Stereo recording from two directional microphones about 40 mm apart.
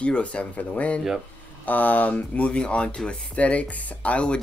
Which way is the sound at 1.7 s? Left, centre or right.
Left.